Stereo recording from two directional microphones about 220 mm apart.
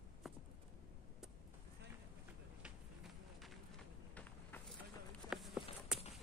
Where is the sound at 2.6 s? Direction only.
Centre (ahead or behind).